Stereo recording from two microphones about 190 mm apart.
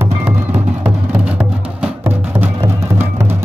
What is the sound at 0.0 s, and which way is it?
Music, 10° right (ahead or behind).